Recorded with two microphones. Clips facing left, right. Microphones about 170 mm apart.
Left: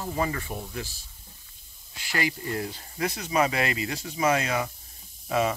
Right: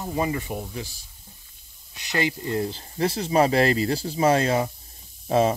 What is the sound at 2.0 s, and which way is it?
Speech, 20° right (ahead or behind).